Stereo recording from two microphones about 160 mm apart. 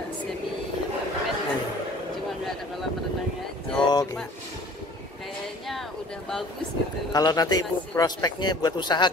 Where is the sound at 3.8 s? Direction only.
25° left (ahead or behind).